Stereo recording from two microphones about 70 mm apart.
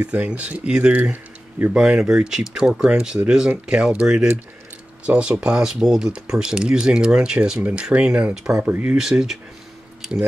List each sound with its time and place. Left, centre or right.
0.0 s speech: centre
1.1 s a sound: right
1.8 s speech: centre
9.1 s speech: right